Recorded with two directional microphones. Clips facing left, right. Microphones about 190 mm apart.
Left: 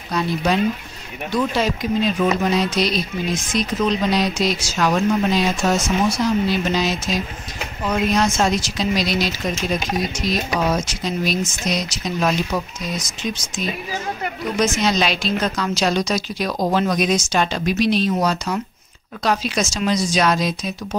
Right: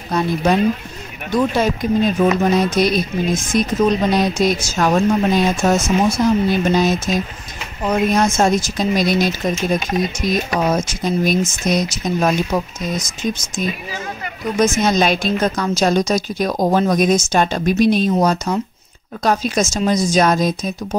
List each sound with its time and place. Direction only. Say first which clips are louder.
0.1 s speech: right 3 dB; 45° right (ahead or behind)